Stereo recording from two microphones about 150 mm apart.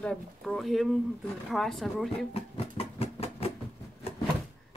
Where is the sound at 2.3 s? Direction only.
45° left (ahead or behind).